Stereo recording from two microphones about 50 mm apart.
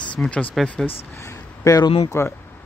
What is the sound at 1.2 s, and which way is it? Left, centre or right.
Speech, left.